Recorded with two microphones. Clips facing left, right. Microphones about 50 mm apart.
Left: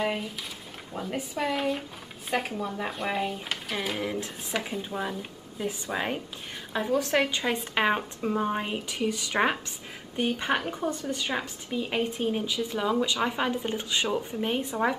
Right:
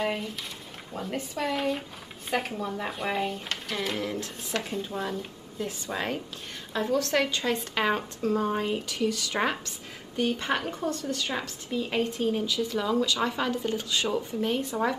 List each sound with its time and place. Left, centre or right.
0.0 s a woman's voice: centre